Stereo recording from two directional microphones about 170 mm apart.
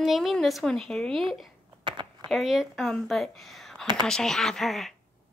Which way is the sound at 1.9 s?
30° right (ahead or behind).